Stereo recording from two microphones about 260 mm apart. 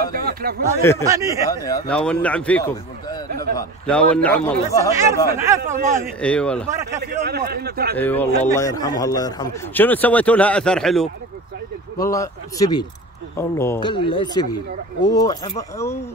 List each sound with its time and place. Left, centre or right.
0.1 s a sound: right
1.0 s speech: centre
1.4 s speech: centre
3.3 s a sound: right
3.5 s a man's voice: centre
4.9 s speech: centre
6.2 s a man's voice: centre
7.0 s a man's voice: right
8.0 s speech: centre
12.0 s speech: centre